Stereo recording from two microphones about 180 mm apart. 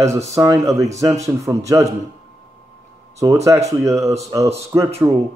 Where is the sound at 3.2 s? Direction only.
20° right (ahead or behind).